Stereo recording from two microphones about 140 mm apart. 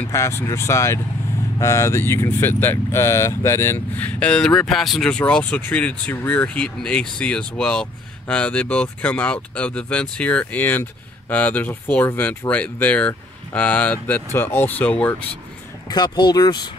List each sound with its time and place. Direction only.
0.1 s speech: 20° left (ahead or behind)
15.9 s speech: 30° left (ahead or behind)